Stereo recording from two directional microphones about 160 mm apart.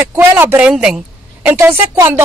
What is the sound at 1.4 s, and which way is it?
Speech, 15° right (ahead or behind).